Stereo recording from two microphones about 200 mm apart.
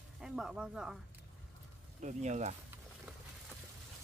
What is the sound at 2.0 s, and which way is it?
Speech, 35° right (ahead or behind).